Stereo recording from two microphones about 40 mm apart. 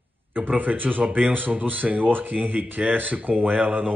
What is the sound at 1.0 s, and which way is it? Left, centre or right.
Speech, right.